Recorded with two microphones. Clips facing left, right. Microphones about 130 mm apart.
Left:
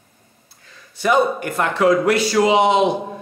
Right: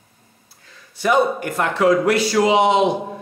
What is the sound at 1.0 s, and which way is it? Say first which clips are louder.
Speech: even; 15° right (ahead or behind).